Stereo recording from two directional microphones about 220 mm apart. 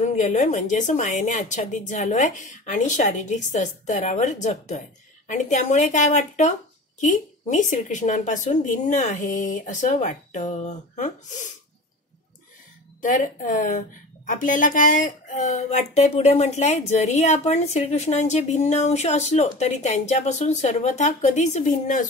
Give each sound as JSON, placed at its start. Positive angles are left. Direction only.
{"t": 0.0, "sound": "a woman's voice", "side_deg": 30}
{"t": 13.0, "sound": "a woman's voice", "side_deg": 35}